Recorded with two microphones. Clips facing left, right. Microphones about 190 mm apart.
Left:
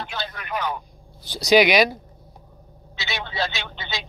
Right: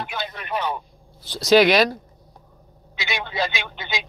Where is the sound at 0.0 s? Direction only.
10° right (ahead or behind).